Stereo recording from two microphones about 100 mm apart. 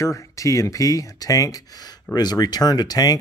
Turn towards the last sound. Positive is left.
turn(degrees=40)  # may be behind; listen again after turning